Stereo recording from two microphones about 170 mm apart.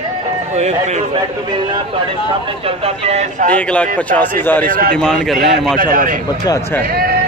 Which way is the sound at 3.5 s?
10° left (ahead or behind).